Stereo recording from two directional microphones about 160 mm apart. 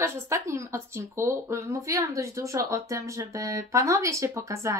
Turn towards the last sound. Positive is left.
turn(degrees=-20)  # may be behind; listen again after turning